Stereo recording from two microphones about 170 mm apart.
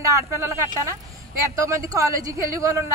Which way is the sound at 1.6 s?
20° right (ahead or behind).